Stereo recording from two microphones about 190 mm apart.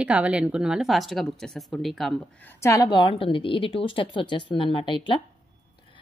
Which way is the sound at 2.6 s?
15° left (ahead or behind).